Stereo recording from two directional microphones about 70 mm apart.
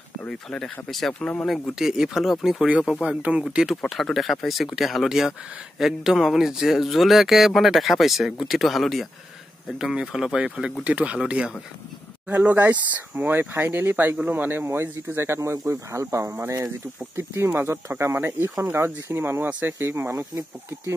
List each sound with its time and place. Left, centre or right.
0.3 s speech: centre
1.8 s speech: centre; by 18.5 s right
18.8 s speech: right